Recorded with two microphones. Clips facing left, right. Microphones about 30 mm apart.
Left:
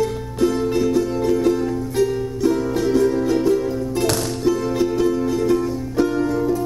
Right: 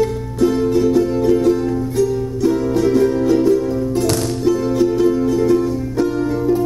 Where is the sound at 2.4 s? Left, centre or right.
Centre.